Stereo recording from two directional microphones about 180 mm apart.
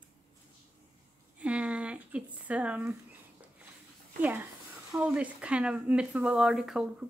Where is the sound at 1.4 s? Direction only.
5° right (ahead or behind).